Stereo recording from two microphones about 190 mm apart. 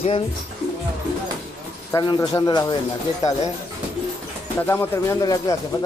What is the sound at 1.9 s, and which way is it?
Speech, 20° left (ahead or behind).